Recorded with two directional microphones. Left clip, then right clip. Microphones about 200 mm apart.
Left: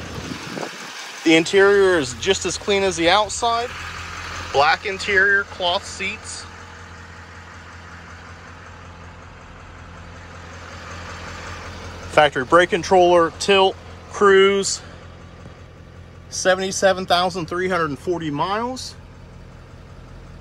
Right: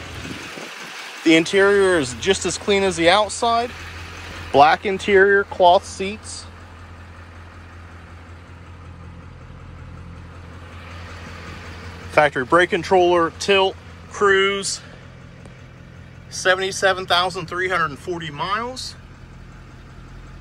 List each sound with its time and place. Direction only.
1.2 s speech: 15° left (ahead or behind)
4.6 s speech: 15° right (ahead or behind)
12.1 s speech: 10° left (ahead or behind); by 14.8 s 30° left (ahead or behind)
16.3 s speech: 30° left (ahead or behind)